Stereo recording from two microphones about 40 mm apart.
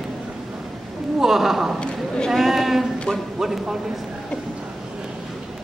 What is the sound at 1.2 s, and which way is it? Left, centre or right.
Speech, centre.